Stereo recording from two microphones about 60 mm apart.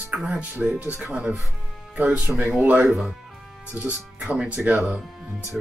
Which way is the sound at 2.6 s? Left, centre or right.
Right.